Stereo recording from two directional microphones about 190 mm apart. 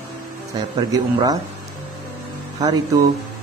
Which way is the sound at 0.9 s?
20° right (ahead or behind).